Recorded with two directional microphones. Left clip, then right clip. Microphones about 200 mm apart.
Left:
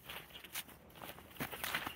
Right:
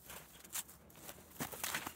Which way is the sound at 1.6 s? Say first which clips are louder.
Left 2 dB; 5° right (ahead or behind).